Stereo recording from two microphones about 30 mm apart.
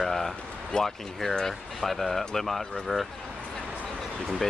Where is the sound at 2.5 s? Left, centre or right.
Centre.